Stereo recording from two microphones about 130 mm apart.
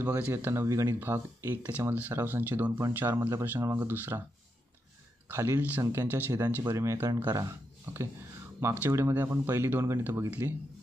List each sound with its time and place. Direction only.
0.0 s speech: 15° right (ahead or behind)
5.3 s speech: 20° right (ahead or behind)